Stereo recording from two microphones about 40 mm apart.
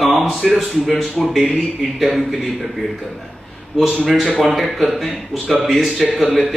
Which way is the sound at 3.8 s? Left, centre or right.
Centre.